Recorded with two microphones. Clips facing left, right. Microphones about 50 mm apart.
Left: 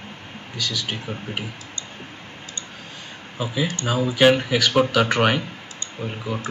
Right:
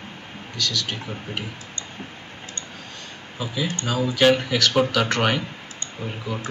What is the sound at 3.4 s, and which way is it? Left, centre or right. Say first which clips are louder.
Speech: left 2 dB; centre.